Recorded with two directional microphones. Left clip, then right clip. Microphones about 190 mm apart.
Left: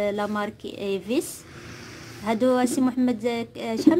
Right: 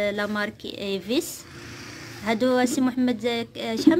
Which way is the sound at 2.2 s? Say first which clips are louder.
Even; 5° left (ahead or behind).